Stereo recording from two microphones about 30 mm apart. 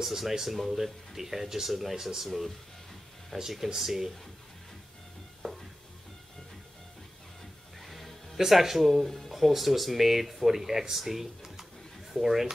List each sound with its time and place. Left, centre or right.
0.0 s speech: centre
2.2 s speech: centre
3.5 s speech: centre
5.4 s music: centre
7.8 s music: centre
8.5 s speech: centre